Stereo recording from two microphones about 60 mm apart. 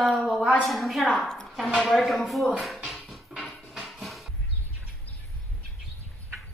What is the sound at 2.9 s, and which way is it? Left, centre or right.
Music, centre.